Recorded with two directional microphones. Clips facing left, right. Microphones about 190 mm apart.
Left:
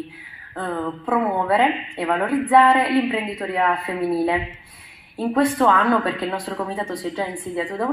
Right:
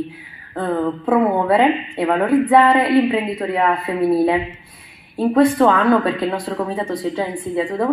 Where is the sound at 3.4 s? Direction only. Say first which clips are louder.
Right 3 dB; 35° right (ahead or behind).